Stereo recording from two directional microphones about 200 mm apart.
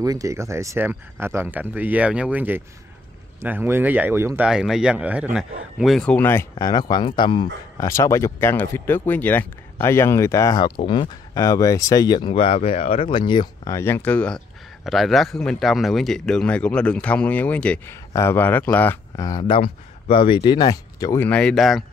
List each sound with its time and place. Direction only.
0.0 s speech: 15° right (ahead or behind); by 21.8 s centre (ahead or behind)